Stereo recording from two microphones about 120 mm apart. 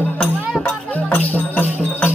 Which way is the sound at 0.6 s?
15° left (ahead or behind).